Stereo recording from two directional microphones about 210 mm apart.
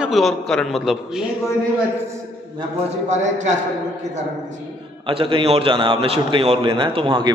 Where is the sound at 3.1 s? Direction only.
35° right (ahead or behind).